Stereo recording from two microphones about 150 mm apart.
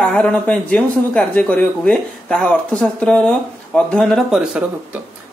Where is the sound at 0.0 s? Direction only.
5° left (ahead or behind).